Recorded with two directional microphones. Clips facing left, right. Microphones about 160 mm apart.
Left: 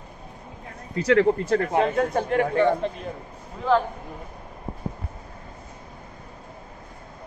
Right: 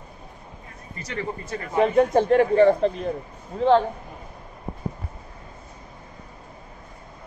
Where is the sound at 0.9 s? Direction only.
90° left; by 1.8 s 65° left (ahead or behind).